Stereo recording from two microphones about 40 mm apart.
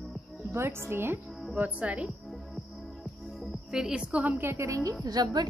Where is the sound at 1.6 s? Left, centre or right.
Right.